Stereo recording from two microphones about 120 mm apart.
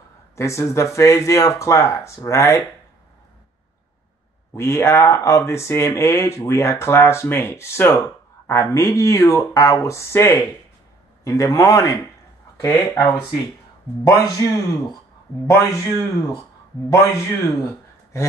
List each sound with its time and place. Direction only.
0.4 s speech: 25° left (ahead or behind)
4.6 s speech: 20° left (ahead or behind)
15.4 s speech: 25° left (ahead or behind)